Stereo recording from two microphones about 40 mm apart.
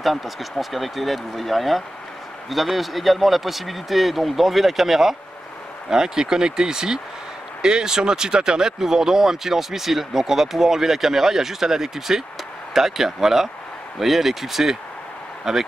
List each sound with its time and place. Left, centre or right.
0.0 s speech: centre